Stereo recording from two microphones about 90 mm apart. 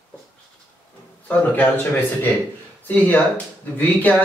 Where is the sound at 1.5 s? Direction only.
20° left (ahead or behind).